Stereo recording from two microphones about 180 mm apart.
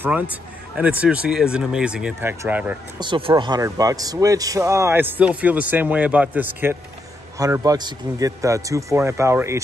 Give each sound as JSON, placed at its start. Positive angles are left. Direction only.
{"t": 0.0, "sound": "speech", "side_deg": -10}
{"t": 3.0, "sound": "a man's voice", "side_deg": -30}